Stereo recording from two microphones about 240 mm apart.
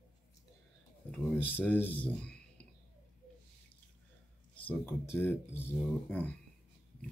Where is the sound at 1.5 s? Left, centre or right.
Centre.